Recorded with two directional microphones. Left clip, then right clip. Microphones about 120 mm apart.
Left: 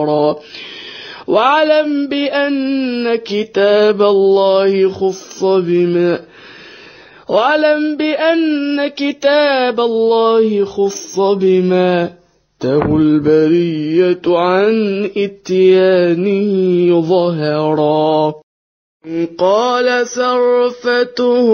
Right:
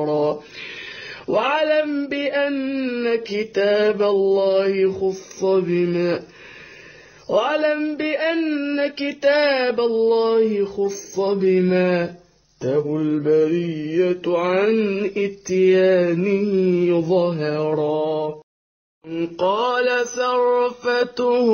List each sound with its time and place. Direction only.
0.0 s mantra: 50° left (ahead or behind)
1.0 s speech: 45° left (ahead or behind)
2.0 s mantra: 50° left (ahead or behind)
2.5 s mantra: 35° left (ahead or behind)
7.2 s mantra: 50° left (ahead or behind)
8.4 s speech: 30° left (ahead or behind)
8.7 s mantra: 45° left (ahead or behind)
12.5 s mantra: 55° left (ahead or behind)
19.3 s mantra: 45° left (ahead or behind)